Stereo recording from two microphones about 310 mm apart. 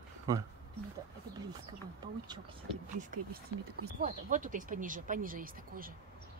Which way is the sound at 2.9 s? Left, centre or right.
Right.